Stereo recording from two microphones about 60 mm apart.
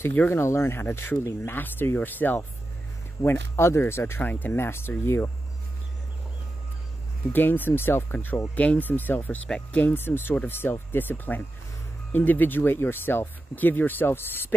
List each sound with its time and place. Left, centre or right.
0.3 s speech: left
3.2 s speech: left
4.2 s speech: left
4.6 s speech: left
7.3 s speech: left